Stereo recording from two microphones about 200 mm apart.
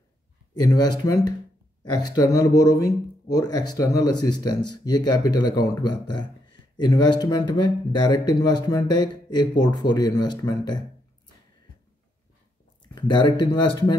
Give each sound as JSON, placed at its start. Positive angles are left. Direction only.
{"t": 0.6, "sound": "speech", "side_deg": 20}
{"t": 12.8, "sound": "speech", "side_deg": 20}